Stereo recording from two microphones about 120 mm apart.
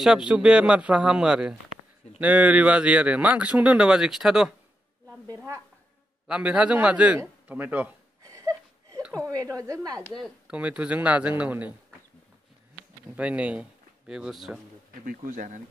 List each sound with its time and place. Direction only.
0.0 s speech: 5° right (ahead or behind)
6.2 s speech: 10° right (ahead or behind)
8.2 s a sound: 25° right (ahead or behind)
9.1 s speech: 30° right (ahead or behind)
10.5 s speech: 10° right (ahead or behind)
13.1 s speech: 10° right (ahead or behind)
15.2 s speech: 90° right